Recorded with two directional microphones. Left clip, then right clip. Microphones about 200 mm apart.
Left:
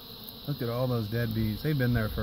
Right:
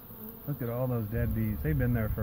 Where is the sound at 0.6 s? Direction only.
15° left (ahead or behind).